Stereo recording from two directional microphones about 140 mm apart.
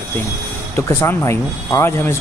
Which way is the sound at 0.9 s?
20° left (ahead or behind).